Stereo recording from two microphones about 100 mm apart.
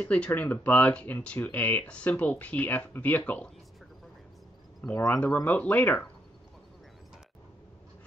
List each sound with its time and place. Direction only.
0.0 s speech: 15° left (ahead or behind)
5.1 s speech: 10° left (ahead or behind)